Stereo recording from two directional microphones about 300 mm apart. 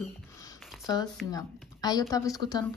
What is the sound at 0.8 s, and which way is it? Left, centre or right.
Speech, centre.